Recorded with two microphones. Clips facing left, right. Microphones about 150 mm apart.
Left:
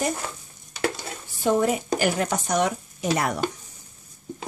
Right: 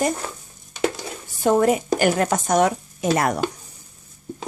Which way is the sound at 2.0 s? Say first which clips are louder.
Right 4 dB; 50° right (ahead or behind).